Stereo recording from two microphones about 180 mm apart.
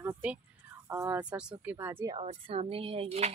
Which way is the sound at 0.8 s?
15° right (ahead or behind).